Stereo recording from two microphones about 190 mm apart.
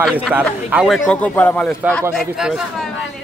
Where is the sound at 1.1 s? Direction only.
5° left (ahead or behind).